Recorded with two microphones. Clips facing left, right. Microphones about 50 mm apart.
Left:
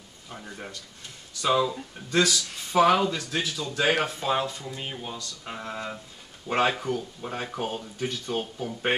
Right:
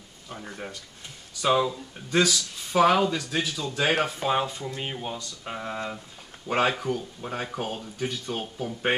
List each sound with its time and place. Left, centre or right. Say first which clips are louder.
1.4 s speech: right 1 dB; centre
2.3 s speech: left 1 dB; centre
3.2 s speech: right 1 dB; centre